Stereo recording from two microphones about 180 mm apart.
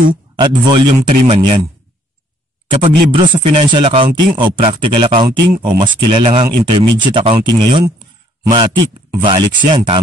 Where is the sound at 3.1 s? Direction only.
30° right (ahead or behind).